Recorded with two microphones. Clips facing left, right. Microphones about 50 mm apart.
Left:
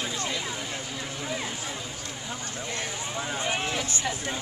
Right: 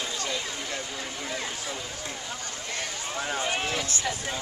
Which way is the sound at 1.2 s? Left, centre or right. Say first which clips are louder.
Left 2 dB; centre.